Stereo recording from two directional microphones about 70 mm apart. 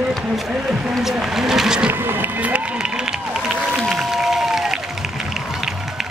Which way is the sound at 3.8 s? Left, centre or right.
Centre.